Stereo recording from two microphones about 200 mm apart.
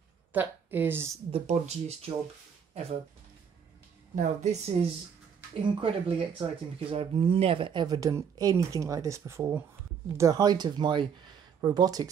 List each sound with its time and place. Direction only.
0.3 s a woman's voice: 10° right (ahead or behind)
1.3 s speech: 30° right (ahead or behind)
4.1 s a woman's voice: 35° right (ahead or behind); by 12.1 s 20° right (ahead or behind)